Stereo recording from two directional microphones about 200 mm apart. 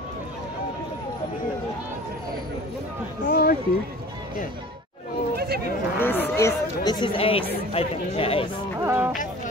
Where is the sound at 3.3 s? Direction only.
50° left (ahead or behind).